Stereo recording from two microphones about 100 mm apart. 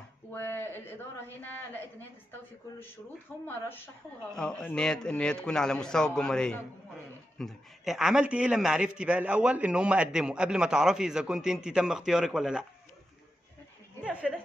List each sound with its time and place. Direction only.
0.3 s a man's voice: 25° left (ahead or behind)
3.4 s a man's voice: 20° left (ahead or behind)
4.3 s a man's voice: 10° left (ahead or behind)
14.0 s a sound: 10° right (ahead or behind)